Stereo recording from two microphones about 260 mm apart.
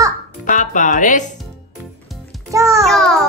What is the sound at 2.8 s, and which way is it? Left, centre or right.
Speech, centre.